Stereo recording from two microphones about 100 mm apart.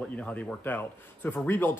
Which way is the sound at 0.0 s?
15° left (ahead or behind).